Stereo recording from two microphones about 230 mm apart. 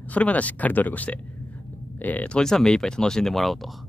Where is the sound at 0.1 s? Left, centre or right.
Centre.